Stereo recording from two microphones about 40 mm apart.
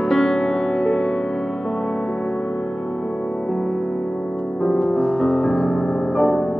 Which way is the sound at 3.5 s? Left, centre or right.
Centre.